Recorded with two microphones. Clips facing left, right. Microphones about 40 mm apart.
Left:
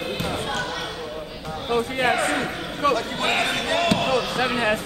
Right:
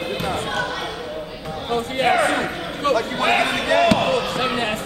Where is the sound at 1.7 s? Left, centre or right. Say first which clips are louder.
Right 2 dB; right.